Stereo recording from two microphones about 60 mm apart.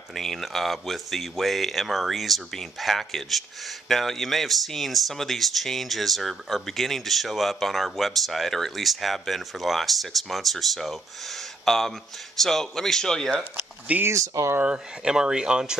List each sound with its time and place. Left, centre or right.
0.1 s speech: centre
13.4 s speech: right
14.0 s speech: right
15.0 s speech: centre